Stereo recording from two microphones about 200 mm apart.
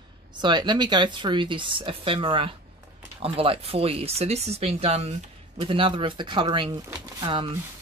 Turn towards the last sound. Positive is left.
turn(degrees=-25)  # may be behind; listen again after turning